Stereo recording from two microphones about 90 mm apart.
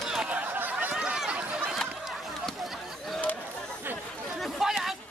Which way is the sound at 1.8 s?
Centre (ahead or behind).